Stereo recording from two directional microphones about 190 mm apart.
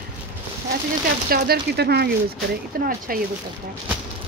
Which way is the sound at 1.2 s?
55° right (ahead or behind).